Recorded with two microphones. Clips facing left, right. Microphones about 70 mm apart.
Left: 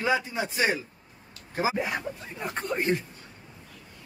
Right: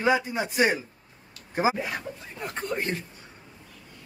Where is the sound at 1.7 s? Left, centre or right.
Centre.